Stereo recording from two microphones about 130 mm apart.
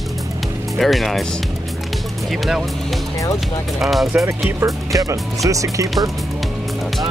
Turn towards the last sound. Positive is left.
turn(degrees=-25)  # may be behind; listen again after turning